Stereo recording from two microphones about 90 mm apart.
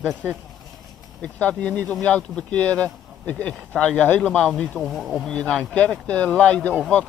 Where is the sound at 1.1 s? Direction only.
15° left (ahead or behind).